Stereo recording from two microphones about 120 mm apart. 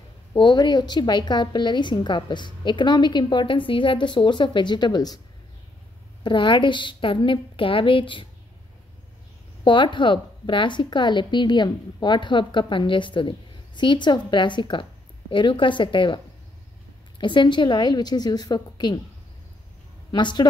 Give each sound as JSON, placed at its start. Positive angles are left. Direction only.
{"t": 0.3, "sound": "a woman's voice", "side_deg": 35}
{"t": 6.2, "sound": "a woman's voice", "side_deg": 40}
{"t": 9.7, "sound": "a woman's voice", "side_deg": 40}
{"t": 17.2, "sound": "a woman's voice", "side_deg": 40}
{"t": 20.1, "sound": "speech", "side_deg": 40}